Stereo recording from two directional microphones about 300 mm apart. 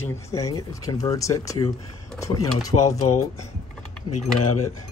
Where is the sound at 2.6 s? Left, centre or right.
Left.